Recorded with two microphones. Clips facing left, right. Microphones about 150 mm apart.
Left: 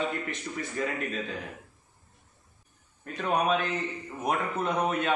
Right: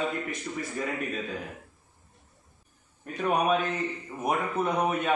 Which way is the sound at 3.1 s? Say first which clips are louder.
Right 1 dB; 10° right (ahead or behind).